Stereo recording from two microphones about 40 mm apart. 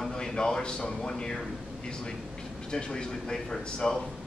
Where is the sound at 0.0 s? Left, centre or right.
Centre.